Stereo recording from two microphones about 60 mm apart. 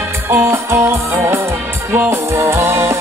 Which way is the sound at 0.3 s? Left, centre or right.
Right.